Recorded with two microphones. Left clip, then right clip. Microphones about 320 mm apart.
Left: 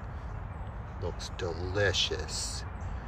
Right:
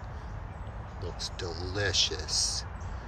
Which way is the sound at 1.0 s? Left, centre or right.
Centre.